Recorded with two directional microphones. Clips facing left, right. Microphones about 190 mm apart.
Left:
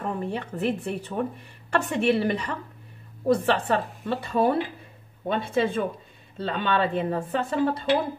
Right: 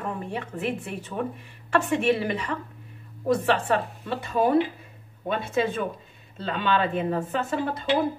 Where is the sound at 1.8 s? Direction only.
35° left (ahead or behind).